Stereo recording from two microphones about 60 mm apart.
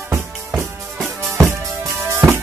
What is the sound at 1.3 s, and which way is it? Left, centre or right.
Music, right.